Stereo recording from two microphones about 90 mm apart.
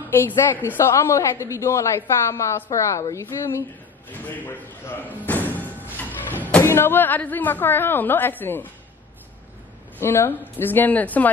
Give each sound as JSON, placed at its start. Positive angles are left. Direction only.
{"t": 0.1, "sound": "a woman's voice", "side_deg": 25}
{"t": 4.1, "sound": "speech", "side_deg": 20}
{"t": 6.3, "sound": "music", "side_deg": 20}
{"t": 6.6, "sound": "speech", "side_deg": 30}
{"t": 9.9, "sound": "speech", "side_deg": 25}